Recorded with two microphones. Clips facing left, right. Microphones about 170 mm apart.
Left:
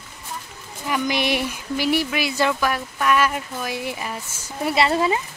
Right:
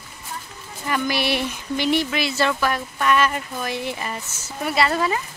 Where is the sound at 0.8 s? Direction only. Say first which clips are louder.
Even; 15° left (ahead or behind).